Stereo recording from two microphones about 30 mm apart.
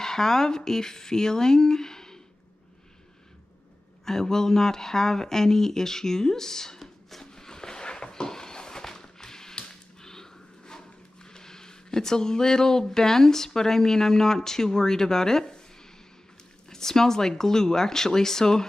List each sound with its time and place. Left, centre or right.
0.0 s speech: centre
4.0 s speech: centre
7.3 s a sound: left
9.7 s whip: centre
11.2 s speech: left
16.6 s speech: centre